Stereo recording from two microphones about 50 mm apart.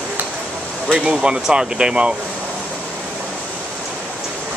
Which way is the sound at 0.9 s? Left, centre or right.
Centre.